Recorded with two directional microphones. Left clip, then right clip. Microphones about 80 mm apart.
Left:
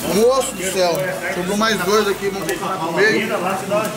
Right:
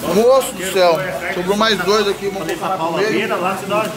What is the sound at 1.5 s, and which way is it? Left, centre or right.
Speech, centre.